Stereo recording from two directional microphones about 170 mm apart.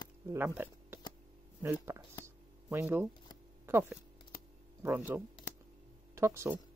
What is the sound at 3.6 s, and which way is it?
Speech, 15° right (ahead or behind).